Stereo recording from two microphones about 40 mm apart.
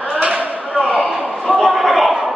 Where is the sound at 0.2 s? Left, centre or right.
Right.